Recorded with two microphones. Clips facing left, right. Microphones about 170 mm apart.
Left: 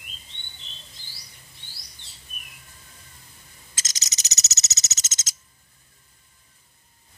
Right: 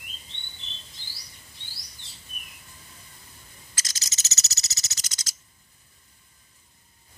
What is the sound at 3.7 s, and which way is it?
Owl, 20° left (ahead or behind).